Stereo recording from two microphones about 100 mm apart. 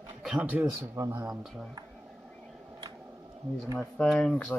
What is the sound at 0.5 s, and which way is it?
Speech, 15° right (ahead or behind).